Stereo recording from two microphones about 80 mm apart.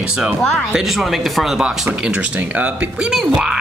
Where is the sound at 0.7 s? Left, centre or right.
Centre.